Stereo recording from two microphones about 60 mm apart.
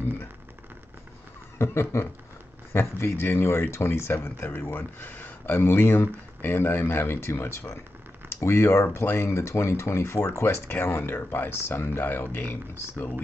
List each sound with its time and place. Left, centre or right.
1.6 s speech: left
10.4 s speech: left